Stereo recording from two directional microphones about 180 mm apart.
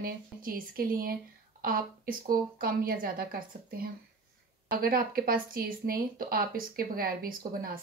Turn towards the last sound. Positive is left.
turn(degrees=-50)  # may be behind; listen again after turning